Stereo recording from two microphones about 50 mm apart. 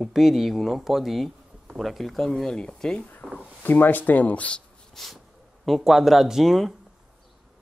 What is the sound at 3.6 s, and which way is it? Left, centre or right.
Speech, left.